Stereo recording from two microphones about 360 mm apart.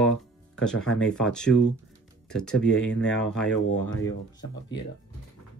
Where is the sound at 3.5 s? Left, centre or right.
Left.